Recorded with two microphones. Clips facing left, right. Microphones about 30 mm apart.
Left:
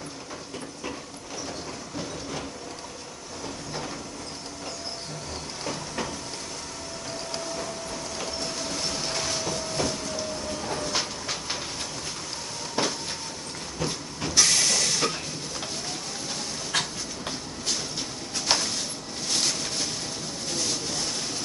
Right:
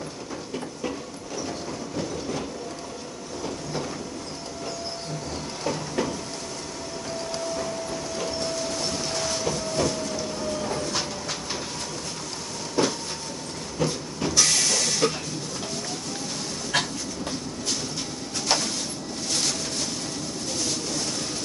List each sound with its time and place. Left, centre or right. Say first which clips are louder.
5.6 s vehicle: right 5 dB; centre
7.5 s printer: right 4 dB; centre
10.8 s train: right 1 dB; centre
12.8 s a sound: right 4 dB; centre
13.7 s train: right 5 dB; centre
14.3 s hiss: left 1 dB; centre
16.7 s dog: right 3 dB; centre
18.5 s a sound: right 1 dB; centre
19.3 s boat: even; centre